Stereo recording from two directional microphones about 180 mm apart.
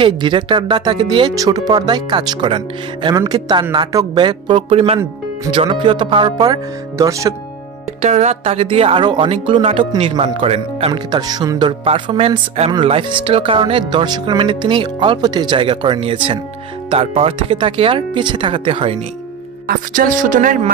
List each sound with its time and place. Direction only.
0.0 s speech: 25° right (ahead or behind)
8.0 s speech: 40° right (ahead or behind)
19.7 s speech: 50° right (ahead or behind)